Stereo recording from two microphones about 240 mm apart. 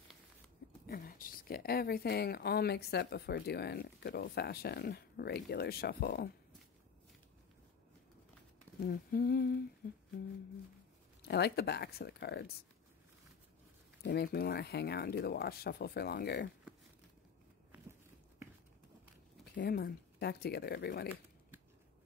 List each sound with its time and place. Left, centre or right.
0.8 s speech: left
8.8 s speech: left
11.2 s speech: left
14.0 s speech: left
19.4 s speech: left